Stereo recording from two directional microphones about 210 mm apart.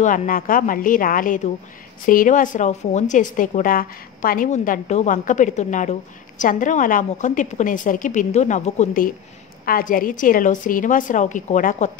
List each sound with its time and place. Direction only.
0.0 s a woman's voice: 40° left (ahead or behind)